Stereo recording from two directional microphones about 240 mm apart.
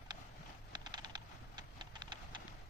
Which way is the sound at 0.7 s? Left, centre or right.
Centre.